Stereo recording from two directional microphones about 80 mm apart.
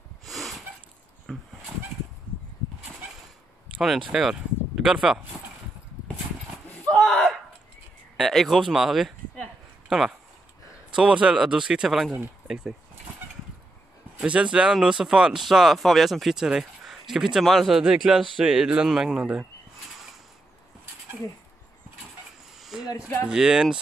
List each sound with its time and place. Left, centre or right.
0.2 s a sound: centre
1.3 s dog: centre
4.1 s speech: centre
6.9 s a sound: centre
8.2 s speech: centre
14.1 s speech: centre
22.6 s a sound: centre
22.9 s speech: left
23.2 s speech: centre